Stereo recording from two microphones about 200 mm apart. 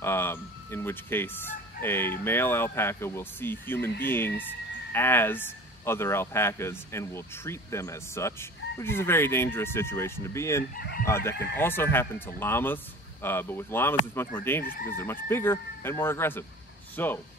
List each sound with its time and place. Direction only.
0.0 s fowl: 10° left (ahead or behind)
2.2 s speech: 10° left (ahead or behind)
10.8 s speech: 50° left (ahead or behind)
11.1 s speech: 10° left (ahead or behind)
14.6 s chicken: 45° left (ahead or behind)
14.9 s speech: 10° left (ahead or behind)